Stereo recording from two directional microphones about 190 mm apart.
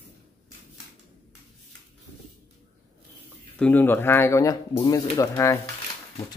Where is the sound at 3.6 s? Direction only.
10° left (ahead or behind).